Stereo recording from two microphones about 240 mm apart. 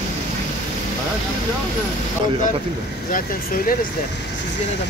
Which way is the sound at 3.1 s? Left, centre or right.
Left.